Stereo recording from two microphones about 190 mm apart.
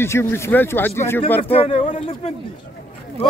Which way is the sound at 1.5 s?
30° left (ahead or behind).